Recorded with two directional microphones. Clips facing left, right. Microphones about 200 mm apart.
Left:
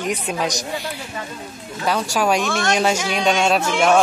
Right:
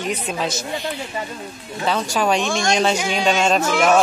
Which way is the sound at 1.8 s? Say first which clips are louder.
Even; 10° left (ahead or behind).